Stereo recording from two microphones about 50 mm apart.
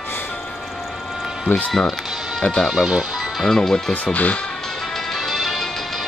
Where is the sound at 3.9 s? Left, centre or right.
Left.